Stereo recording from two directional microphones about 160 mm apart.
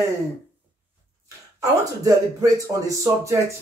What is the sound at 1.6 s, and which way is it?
Speech, 20° right (ahead or behind).